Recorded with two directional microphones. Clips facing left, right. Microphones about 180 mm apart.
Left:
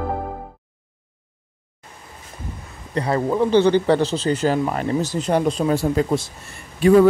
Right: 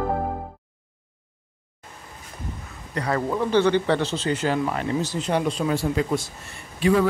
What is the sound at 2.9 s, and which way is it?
A man's voice, 25° left (ahead or behind).